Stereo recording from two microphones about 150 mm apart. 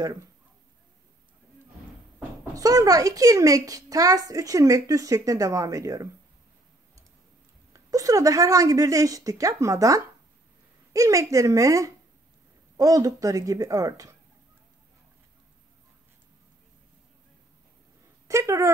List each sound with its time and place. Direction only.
2.5 s a child's voice: 20° right (ahead or behind)
7.7 s a child's voice: 25° right (ahead or behind)
18.3 s speech: 20° right (ahead or behind)